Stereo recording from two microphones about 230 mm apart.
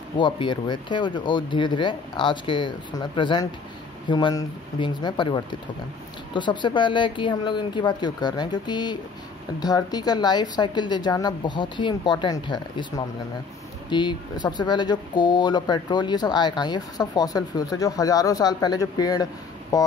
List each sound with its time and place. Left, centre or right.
0.2 s speech: left